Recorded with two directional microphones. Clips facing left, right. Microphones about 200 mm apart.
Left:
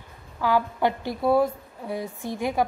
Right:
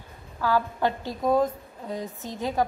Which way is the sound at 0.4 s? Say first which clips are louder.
Left 2 dB; 15° left (ahead or behind).